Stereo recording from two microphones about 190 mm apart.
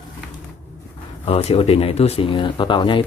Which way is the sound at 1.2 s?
30° left (ahead or behind).